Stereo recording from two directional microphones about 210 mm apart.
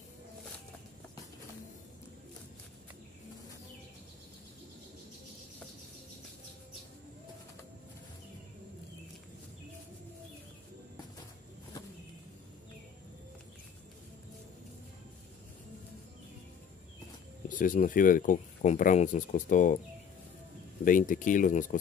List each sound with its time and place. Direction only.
17.5 s speech: 40° left (ahead or behind)
20.8 s speech: 40° left (ahead or behind)